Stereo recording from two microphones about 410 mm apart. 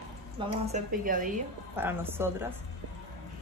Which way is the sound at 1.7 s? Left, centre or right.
Centre.